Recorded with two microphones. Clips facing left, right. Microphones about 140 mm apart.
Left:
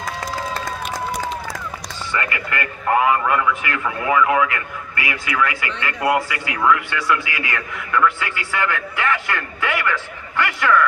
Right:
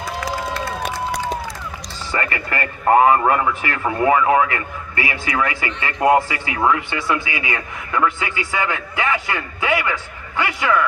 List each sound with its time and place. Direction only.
2.1 s a man's voice: 35° right (ahead or behind); by 10.9 s 15° right (ahead or behind)